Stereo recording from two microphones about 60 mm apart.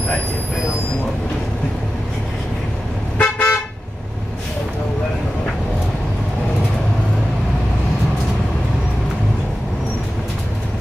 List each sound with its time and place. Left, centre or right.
3.2 s toot: left